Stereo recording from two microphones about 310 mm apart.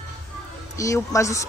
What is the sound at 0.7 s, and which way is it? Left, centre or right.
Speech, centre.